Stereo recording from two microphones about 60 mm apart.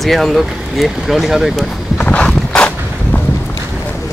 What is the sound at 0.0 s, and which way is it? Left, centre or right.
Speech, centre.